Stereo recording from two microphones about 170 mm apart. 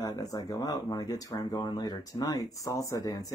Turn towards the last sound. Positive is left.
turn(degrees=20)  # may be behind; listen again after turning